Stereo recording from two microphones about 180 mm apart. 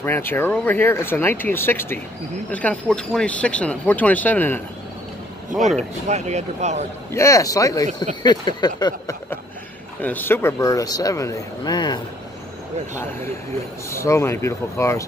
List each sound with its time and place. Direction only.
0.0 s speech: 10° left (ahead or behind)
6.0 s speech: 40° right (ahead or behind)
7.1 s speech: 15° left (ahead or behind)
10.0 s speech: 10° left (ahead or behind)
13.8 s speech: 15° left (ahead or behind)